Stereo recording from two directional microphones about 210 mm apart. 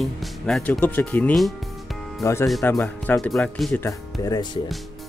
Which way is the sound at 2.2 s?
15° left (ahead or behind).